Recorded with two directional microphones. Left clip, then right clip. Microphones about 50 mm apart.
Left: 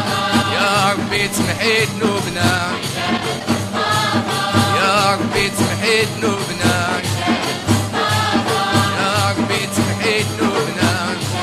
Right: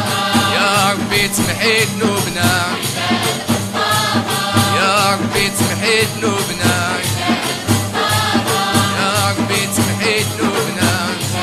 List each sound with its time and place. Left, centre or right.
0.1 s music: right
3.8 s music: right